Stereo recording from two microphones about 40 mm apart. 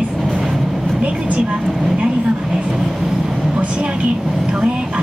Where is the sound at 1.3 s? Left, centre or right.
Right.